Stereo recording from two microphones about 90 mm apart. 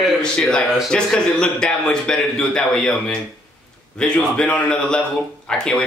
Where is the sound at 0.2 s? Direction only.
10° left (ahead or behind).